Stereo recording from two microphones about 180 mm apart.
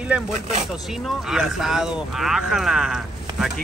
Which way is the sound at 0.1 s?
5° right (ahead or behind).